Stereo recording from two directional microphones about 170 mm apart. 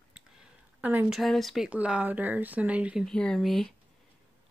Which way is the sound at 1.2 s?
Centre (ahead or behind).